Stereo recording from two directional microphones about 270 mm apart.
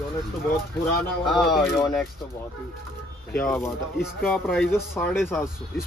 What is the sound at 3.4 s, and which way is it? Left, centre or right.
Speech, centre.